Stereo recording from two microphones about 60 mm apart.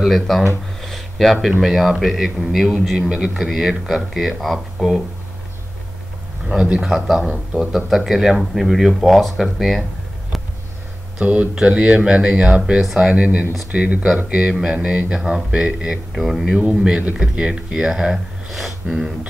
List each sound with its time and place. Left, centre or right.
0.0 s speech: centre
0.8 s a sound: centre
1.6 s speech: centre
6.5 s speech: centre
11.1 s speech: right